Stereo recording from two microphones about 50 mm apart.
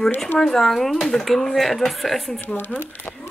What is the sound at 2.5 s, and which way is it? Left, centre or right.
Speech, left.